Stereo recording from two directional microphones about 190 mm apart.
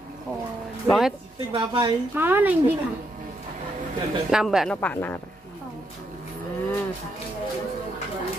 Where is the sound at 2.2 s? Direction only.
10° right (ahead or behind).